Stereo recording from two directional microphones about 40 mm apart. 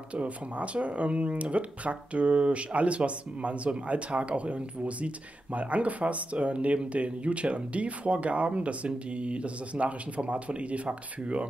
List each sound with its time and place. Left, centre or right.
0.1 s speech: right